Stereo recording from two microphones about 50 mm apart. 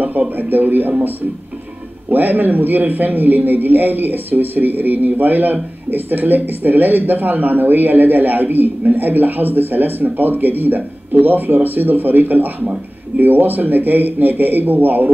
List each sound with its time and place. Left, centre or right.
0.4 s a man's voice: right
2.1 s a man's voice: right